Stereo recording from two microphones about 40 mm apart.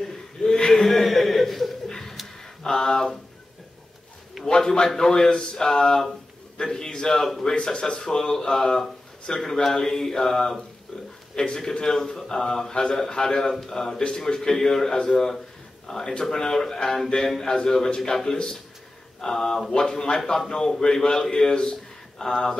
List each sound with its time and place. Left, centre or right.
0.1 s a sound: centre
0.8 s a sound: centre
1.9 s bird: centre
2.6 s a man's voice: centre
4.7 s a man's voice: centre
20.2 s a man's voice: centre